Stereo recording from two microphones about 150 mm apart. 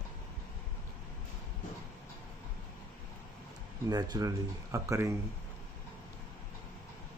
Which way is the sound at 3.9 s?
25° right (ahead or behind).